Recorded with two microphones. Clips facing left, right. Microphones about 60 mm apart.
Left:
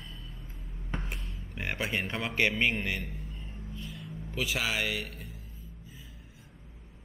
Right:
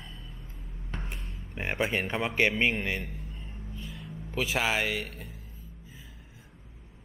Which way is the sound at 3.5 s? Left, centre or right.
Centre.